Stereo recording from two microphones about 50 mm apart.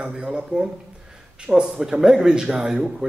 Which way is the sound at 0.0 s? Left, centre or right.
Centre.